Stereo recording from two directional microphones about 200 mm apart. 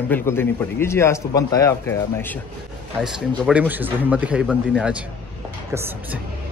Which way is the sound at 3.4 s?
5° right (ahead or behind).